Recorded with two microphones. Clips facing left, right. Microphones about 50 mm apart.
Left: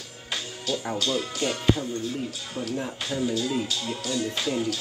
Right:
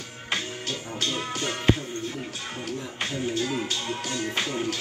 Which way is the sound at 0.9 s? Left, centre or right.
Right.